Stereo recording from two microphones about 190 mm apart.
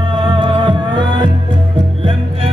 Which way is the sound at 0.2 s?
25° right (ahead or behind).